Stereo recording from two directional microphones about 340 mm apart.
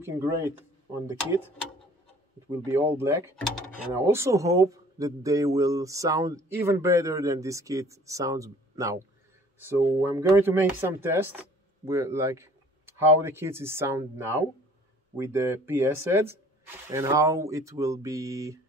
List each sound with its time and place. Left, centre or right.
0.0 s speech: centre
2.6 s a man's voice: centre